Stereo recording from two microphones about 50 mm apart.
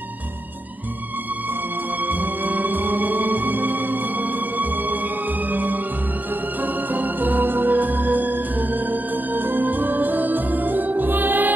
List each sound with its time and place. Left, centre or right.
2.0 s music: right